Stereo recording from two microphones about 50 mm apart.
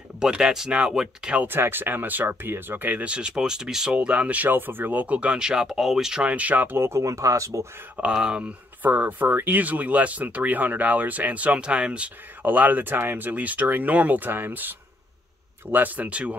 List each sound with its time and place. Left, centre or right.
0.2 s speech: centre
0.7 s speech: right
1.5 s speech: right
2.2 s speech: right
3.0 s speech: right
4.5 s speech: right
5.0 s speech: right
5.7 s speech: centre
6.2 s speech: right
6.8 s speech: right
8.0 s speech: centre
8.8 s speech: right
12.4 s speech: right